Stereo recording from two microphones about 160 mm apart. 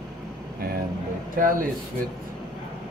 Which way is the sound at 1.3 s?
60° right (ahead or behind).